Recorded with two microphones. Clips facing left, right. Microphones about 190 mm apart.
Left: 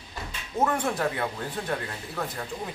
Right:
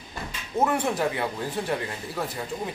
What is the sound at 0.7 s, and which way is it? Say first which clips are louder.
A man's voice: right 2 dB; 10° right (ahead or behind).